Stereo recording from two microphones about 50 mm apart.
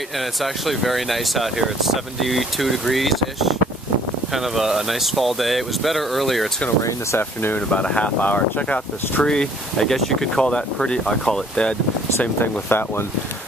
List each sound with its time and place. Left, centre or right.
0.2 s speech: centre
7.2 s speech: left
7.7 s speech: left
9.2 s speech: centre
12.4 s speech: left